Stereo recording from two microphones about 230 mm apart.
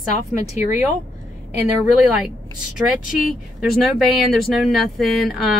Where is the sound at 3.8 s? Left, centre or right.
Centre.